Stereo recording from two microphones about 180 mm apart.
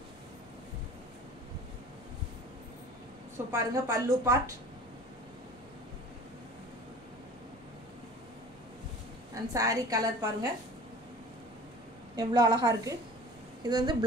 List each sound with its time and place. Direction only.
3.5 s a woman's voice: 15° right (ahead or behind)
9.3 s a woman's voice: 20° right (ahead or behind)
12.2 s a woman's voice: 20° right (ahead or behind)